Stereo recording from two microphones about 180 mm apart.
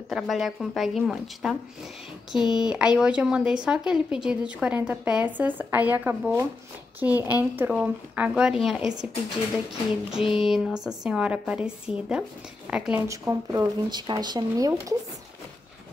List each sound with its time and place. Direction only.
0.1 s speech: centre (ahead or behind)
10.1 s speech: 5° right (ahead or behind)
13.1 s speech: 15° right (ahead or behind)